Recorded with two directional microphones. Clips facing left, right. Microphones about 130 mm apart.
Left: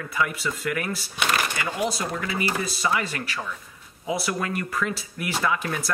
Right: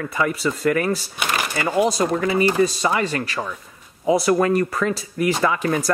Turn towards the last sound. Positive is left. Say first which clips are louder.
# right 6 dB
turn(degrees=-45)  # may be behind; listen again after turning